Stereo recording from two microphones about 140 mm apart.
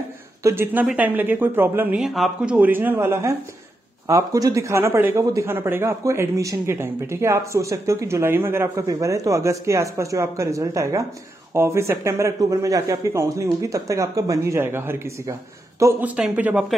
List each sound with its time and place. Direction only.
0.4 s a man's voice: 20° right (ahead or behind)
2.0 s a man's voice: centre (ahead or behind)